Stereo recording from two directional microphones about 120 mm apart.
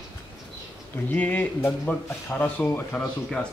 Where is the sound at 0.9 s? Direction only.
15° left (ahead or behind).